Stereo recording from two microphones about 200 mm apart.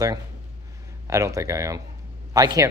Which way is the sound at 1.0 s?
15° right (ahead or behind).